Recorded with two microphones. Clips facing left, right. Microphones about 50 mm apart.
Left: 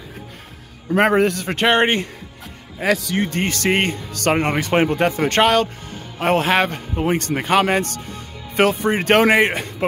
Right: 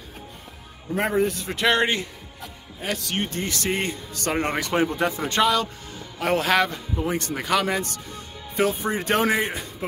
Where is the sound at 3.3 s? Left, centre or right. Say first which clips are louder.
Left 7 dB; left.